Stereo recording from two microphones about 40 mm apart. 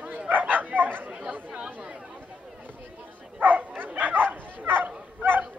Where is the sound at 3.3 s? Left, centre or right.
Right.